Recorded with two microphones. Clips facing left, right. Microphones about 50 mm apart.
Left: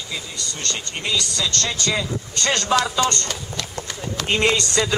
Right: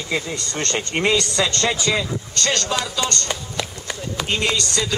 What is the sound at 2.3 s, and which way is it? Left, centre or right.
Speech, centre.